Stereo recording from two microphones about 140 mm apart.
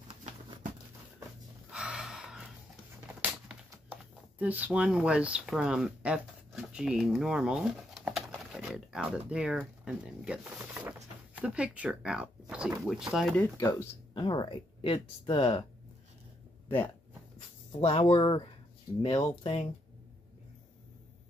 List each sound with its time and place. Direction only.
0.1 s a sound: 45° right (ahead or behind)
1.7 s a sound: 5° right (ahead or behind)
9.3 s speech: 5° right (ahead or behind)
13.3 s speech: 10° left (ahead or behind)
14.1 s speech: 35° left (ahead or behind)
17.7 s speech: 40° left (ahead or behind)